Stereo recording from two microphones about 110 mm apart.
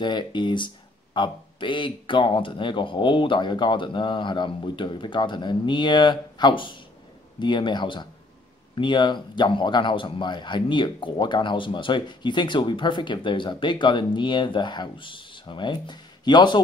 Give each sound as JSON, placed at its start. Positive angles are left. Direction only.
{"t": 0.0, "sound": "speech", "side_deg": 45}